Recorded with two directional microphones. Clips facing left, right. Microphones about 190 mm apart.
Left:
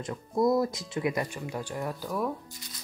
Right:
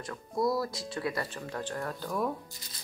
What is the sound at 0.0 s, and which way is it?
Speech, 20° left (ahead or behind).